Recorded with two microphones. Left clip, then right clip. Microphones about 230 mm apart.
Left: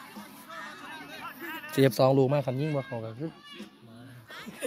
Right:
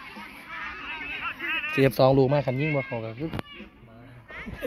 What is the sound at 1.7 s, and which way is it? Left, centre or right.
Speech, centre.